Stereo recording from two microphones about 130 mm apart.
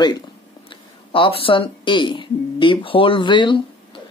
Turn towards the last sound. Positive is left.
turn(degrees=40)  # may be behind; listen again after turning